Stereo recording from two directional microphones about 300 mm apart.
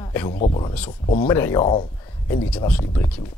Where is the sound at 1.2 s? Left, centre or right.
Centre.